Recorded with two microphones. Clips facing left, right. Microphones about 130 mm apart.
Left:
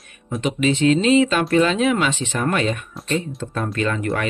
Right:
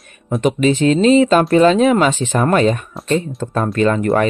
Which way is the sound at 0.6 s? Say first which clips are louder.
Right 3 dB; 40° right (ahead or behind).